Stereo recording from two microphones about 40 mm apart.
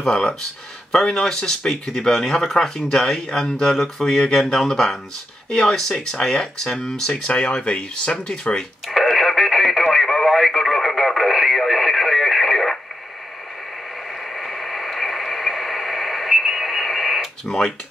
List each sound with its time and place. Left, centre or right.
0.0 s speech: centre
8.8 s radio: centre
14.3 s radio: centre